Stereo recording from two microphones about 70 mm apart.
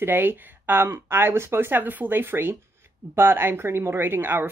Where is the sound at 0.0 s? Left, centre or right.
Right.